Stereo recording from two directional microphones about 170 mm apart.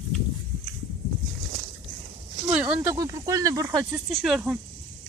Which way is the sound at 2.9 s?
20° right (ahead or behind).